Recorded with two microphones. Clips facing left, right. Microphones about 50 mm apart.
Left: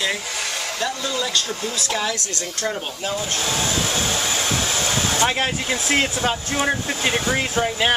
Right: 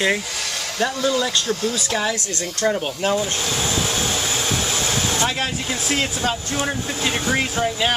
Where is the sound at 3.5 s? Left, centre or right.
Centre.